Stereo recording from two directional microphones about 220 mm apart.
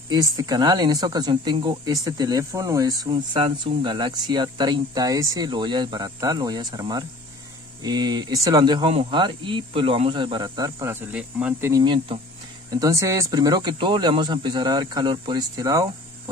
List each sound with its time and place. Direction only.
0.4 s speech: 15° right (ahead or behind)